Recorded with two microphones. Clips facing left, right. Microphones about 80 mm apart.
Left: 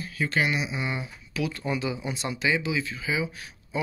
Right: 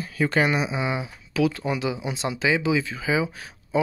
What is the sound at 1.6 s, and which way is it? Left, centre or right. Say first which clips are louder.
Speech: right 3 dB; right.